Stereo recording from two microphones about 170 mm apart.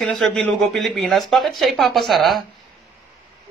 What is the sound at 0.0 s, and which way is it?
Speech, centre (ahead or behind).